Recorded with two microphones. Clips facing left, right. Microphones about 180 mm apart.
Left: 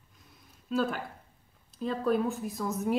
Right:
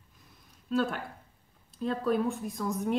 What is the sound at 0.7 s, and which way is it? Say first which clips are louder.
Speech: even; centre (ahead or behind).